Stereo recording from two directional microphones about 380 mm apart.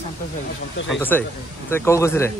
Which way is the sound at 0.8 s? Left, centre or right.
Centre.